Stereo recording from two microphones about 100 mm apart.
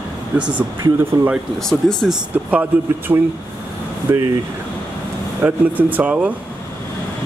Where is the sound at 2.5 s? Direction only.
15° right (ahead or behind).